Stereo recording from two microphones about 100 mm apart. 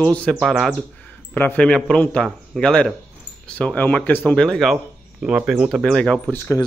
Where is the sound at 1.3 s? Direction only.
15° left (ahead or behind).